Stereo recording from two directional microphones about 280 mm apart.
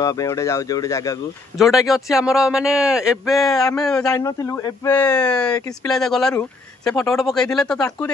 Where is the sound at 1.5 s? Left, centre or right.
Centre.